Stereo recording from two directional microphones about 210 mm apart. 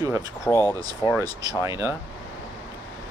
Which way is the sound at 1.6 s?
10° right (ahead or behind).